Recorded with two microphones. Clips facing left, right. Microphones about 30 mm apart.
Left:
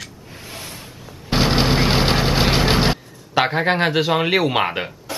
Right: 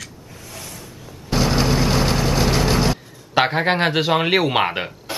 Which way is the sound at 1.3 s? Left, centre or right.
Left.